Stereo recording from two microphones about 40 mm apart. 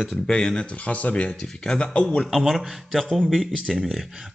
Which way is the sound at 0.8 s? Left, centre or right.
Left.